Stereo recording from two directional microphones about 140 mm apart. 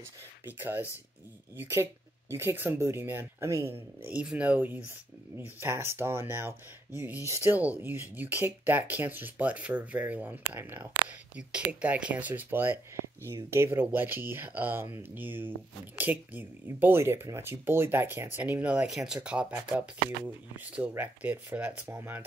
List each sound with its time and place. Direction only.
0.5 s speech: 15° right (ahead or behind)